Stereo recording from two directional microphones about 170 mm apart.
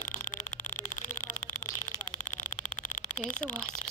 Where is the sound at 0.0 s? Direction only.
50° left (ahead or behind).